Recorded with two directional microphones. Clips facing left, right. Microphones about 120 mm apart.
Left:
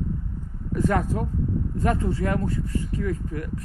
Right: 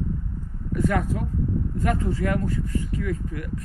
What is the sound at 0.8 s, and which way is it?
Speech, 35° left (ahead or behind).